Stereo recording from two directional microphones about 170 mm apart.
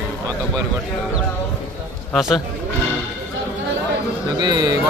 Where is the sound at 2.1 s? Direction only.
Centre (ahead or behind).